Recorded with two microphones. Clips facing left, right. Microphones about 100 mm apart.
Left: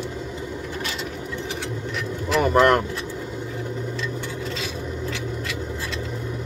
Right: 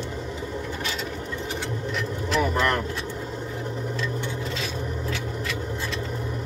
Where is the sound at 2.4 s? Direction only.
75° left (ahead or behind).